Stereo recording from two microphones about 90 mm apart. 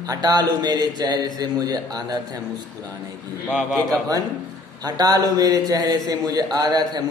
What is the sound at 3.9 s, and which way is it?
A man's voice, 40° right (ahead or behind).